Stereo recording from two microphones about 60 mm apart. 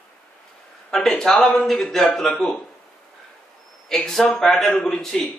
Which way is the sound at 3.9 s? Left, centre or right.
Centre.